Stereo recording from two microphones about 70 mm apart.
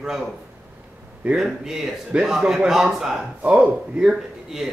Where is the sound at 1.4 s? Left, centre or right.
Centre.